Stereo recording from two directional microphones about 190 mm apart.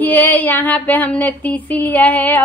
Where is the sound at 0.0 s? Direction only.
10° left (ahead or behind).